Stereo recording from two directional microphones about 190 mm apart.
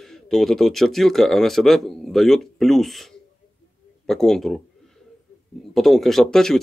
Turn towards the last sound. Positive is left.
turn(degrees=0)  # may be behind; listen again after turning